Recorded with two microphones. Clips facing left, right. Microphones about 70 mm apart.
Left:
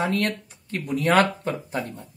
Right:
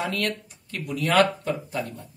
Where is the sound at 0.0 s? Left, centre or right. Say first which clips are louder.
Left 3 dB; left.